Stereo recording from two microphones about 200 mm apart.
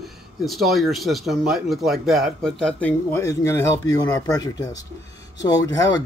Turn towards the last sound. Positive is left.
turn(degrees=20)  # may be behind; listen again after turning